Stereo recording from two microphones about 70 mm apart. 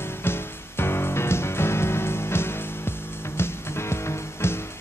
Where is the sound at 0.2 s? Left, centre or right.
Left.